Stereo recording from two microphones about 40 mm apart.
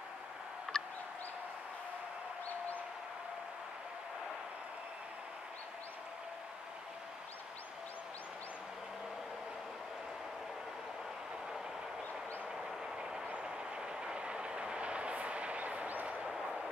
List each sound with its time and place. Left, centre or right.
0.7 s fowl: centre
12.9 s train: centre; by 16.3 s right